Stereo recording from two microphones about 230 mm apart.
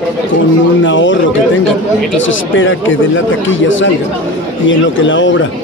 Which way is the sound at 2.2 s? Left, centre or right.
Left.